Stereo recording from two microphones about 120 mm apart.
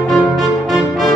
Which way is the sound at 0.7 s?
Centre (ahead or behind).